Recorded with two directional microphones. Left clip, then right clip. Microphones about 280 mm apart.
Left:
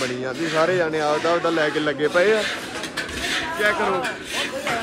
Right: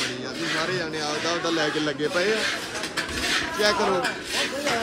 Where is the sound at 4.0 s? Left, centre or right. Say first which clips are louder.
Even; right.